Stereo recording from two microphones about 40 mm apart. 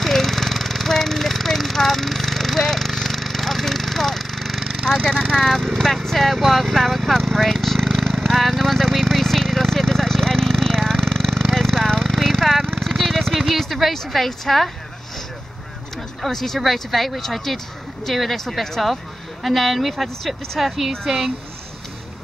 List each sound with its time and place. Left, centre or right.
0.0 s a sound: centre
4.8 s speech: centre
7.2 s vehicle: centre
12.2 s a sound: centre
13.4 s a woman's voice: centre
16.3 s speech: centre